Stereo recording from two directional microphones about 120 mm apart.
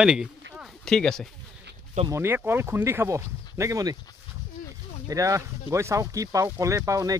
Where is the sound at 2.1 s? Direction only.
20° right (ahead or behind).